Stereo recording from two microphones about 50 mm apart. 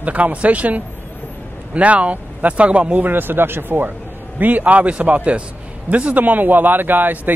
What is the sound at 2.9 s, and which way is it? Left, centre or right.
Speech, right.